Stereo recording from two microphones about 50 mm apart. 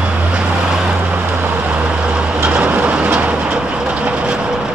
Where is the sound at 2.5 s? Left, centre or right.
Right.